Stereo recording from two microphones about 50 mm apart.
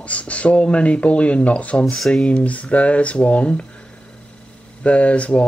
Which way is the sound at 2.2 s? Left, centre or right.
Left.